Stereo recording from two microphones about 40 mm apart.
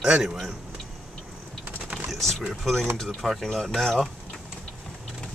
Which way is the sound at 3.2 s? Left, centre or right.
Centre.